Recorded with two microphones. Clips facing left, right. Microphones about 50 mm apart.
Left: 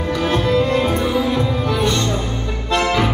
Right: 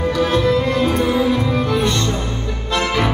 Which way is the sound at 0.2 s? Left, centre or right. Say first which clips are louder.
Even; left.